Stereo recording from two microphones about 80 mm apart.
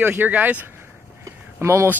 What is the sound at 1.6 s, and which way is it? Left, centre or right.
Speech, right.